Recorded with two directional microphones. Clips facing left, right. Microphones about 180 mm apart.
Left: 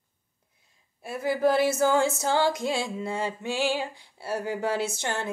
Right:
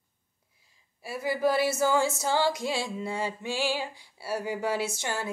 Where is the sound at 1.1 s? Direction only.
50° left (ahead or behind).